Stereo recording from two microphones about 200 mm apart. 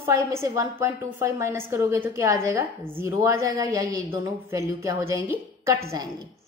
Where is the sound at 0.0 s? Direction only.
15° right (ahead or behind).